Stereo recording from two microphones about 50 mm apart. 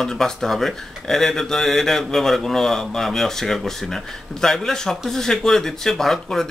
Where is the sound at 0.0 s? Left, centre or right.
Centre.